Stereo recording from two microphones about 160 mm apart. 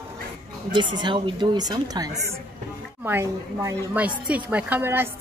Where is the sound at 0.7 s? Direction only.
30° right (ahead or behind).